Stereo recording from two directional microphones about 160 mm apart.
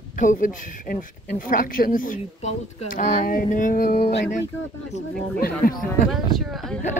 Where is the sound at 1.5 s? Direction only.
60° left (ahead or behind).